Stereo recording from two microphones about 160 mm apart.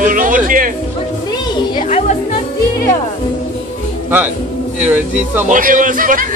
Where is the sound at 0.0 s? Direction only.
55° right (ahead or behind).